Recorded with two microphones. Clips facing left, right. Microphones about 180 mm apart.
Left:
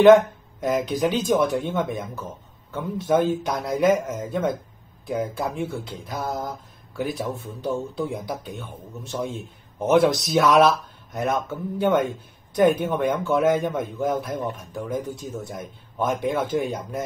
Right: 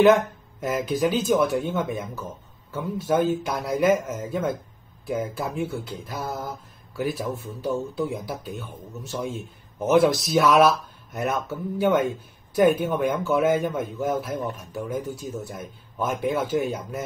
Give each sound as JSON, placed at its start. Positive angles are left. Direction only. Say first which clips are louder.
{"t": 0.0, "sound": "speech", "louder": "left 4 dB", "side_deg": 0}
{"t": 9.8, "sound": "speech", "louder": "even", "side_deg": 0}